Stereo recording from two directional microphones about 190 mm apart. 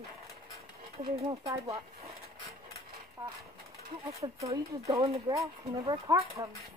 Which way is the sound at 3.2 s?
25° right (ahead or behind).